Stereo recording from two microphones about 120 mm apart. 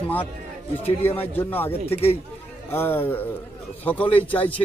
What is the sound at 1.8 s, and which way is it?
Speech, 55° left (ahead or behind).